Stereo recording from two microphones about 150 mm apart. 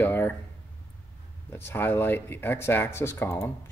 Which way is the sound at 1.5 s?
15° left (ahead or behind).